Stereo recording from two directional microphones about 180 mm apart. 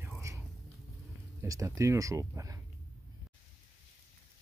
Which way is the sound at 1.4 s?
15° right (ahead or behind).